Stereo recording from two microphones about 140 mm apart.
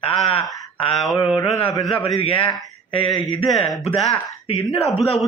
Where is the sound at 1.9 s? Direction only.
40° left (ahead or behind).